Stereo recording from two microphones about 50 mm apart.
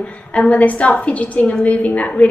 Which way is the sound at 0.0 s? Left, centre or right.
Left.